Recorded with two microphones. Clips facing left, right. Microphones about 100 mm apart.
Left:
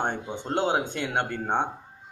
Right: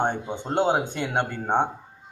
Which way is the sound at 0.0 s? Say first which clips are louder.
Right 3 dB; 20° right (ahead or behind).